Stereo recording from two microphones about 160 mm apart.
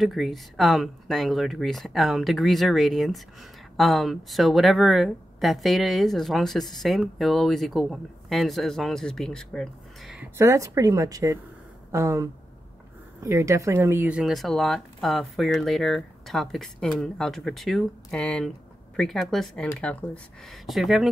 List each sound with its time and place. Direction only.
0.0 s speech: centre (ahead or behind)
10.3 s speech: 20° right (ahead or behind); by 21.1 s centre (ahead or behind)